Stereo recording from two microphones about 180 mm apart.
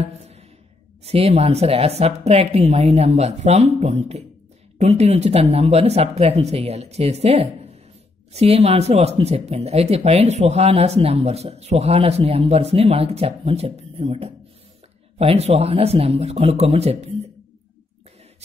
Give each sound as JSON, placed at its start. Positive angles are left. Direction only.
{"t": 0.0, "sound": "music", "side_deg": -35}
{"t": 1.0, "sound": "speech", "side_deg": -35}